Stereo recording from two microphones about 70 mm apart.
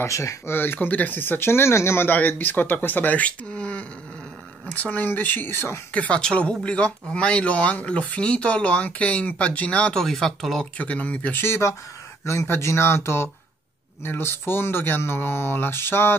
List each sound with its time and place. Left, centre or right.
0.0 s speech: left
0.5 s speech: left
2.1 s speech: left
5.9 s speech: centre
9.9 s speech: centre
10.8 s speech: centre
11.4 s speech: left